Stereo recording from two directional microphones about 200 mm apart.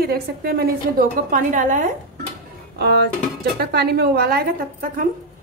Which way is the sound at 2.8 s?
55° right (ahead or behind).